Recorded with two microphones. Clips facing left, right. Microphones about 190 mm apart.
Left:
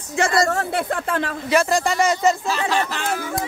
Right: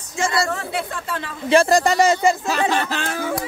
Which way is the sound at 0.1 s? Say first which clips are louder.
Left 3 dB; 60° left (ahead or behind).